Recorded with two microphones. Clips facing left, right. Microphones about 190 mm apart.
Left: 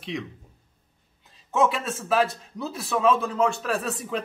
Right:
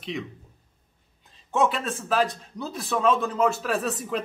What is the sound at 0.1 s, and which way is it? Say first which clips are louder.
Speech: left 3 dB; centre (ahead or behind).